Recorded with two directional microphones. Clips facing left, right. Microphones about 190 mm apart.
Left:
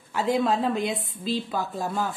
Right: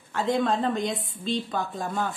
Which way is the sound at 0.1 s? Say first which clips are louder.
Left 1 dB; 5° left (ahead or behind).